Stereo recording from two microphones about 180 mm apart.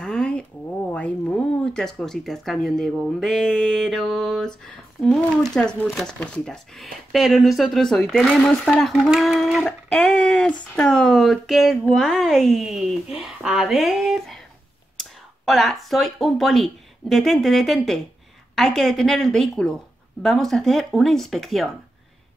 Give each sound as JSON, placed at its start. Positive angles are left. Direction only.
{"t": 0.0, "sound": "a sound", "side_deg": 5}
{"t": 0.9, "sound": "speech", "side_deg": 5}
{"t": 15.4, "sound": "speech", "side_deg": 0}